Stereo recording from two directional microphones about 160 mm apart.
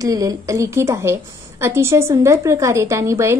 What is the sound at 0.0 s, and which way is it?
A woman's voice, 20° right (ahead or behind).